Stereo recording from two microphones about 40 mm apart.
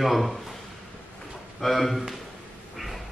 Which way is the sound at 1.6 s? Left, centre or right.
Centre.